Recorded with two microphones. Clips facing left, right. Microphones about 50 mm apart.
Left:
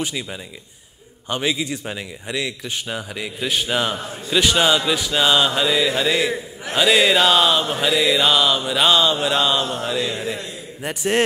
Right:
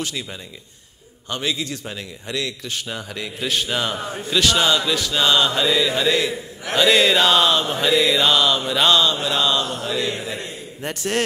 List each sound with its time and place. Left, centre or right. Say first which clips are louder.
0.0 s a man's voice: left 2 dB; centre
6.8 s a sound: even; centre
8.6 s a man's voice: left 1 dB; centre; by 9.7 s left
9.7 s mantra: left 1 dB; left
10.8 s a man's voice: left 3 dB; centre